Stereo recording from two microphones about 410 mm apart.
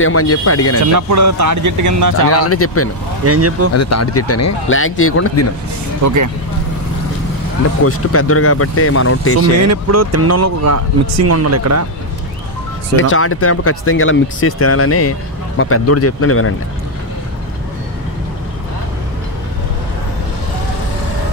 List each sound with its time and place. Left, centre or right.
0.0 s speech: left
0.9 s speech: right
2.3 s speech: left
3.3 s speech: right
3.7 s speech: left
6.0 s speech: right
7.8 s speech: left
9.4 s speech: right
12.9 s speech: left